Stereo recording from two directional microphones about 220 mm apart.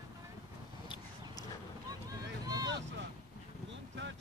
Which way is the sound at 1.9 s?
15° right (ahead or behind).